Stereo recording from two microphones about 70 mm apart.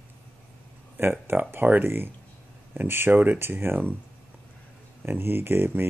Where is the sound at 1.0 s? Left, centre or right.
Right.